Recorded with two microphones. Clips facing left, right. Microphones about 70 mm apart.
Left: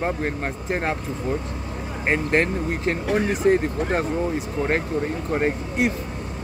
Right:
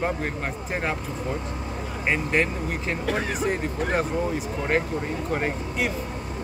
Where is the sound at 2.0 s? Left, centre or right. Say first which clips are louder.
Left 3 dB; left.